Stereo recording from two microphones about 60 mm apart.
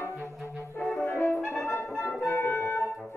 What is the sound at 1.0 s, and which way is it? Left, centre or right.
Brass instrument, left.